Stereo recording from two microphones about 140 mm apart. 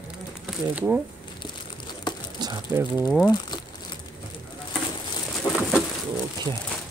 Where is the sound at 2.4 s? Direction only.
30° right (ahead or behind).